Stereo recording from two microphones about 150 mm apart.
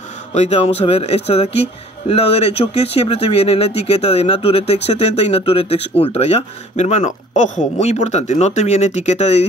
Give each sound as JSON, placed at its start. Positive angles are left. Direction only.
{"t": 0.3, "sound": "speech", "side_deg": 45}